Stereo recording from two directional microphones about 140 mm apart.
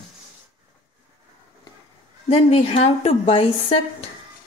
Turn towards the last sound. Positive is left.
turn(degrees=45)  # may be behind; listen again after turning